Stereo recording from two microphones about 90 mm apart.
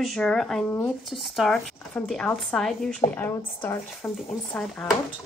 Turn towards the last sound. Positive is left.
turn(degrees=10)  # may be behind; listen again after turning